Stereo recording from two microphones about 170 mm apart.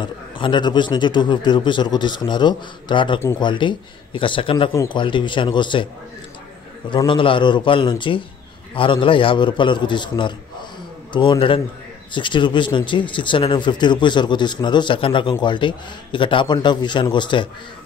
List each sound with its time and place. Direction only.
0.0 s speech: 25° left (ahead or behind)
6.9 s a man's voice: 30° left (ahead or behind)